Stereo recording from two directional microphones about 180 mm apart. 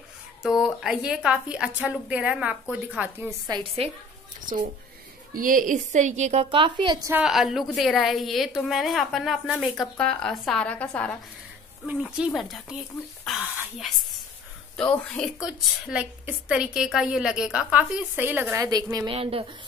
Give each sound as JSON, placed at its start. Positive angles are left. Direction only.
{"t": 0.4, "sound": "a woman's voice", "side_deg": -5}
{"t": 3.8, "sound": "speech", "side_deg": -35}
{"t": 5.3, "sound": "speech", "side_deg": -50}
{"t": 6.5, "sound": "a woman's voice", "side_deg": -30}
{"t": 7.1, "sound": "a woman's voice", "side_deg": -5}
{"t": 11.8, "sound": "a woman's voice", "side_deg": -5}
{"t": 19.1, "sound": "speech", "side_deg": -30}